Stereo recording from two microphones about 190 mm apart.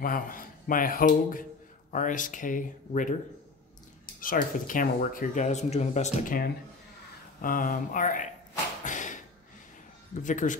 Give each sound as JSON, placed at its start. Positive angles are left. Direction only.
{"t": 0.0, "sound": "speech", "side_deg": 50}
{"t": 4.2, "sound": "speech", "side_deg": 45}
{"t": 8.8, "sound": "a sound", "side_deg": 40}
{"t": 10.2, "sound": "speech", "side_deg": 40}